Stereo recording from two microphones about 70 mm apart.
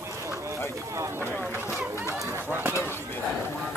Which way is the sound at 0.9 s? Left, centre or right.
Right.